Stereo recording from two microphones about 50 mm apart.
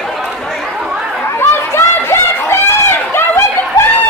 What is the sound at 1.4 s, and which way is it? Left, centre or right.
Run, left.